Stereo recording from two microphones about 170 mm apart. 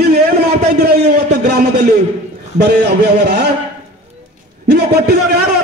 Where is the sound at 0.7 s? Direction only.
80° right.